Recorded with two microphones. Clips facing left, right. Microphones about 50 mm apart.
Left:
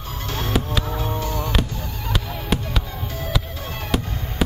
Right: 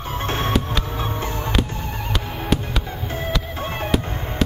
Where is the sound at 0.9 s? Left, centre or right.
Right.